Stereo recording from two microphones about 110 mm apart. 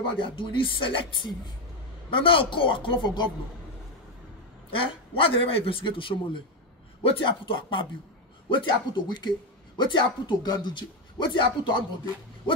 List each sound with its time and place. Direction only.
0.2 s speech: 50° left (ahead or behind)
4.6 s a man's voice: 55° left (ahead or behind)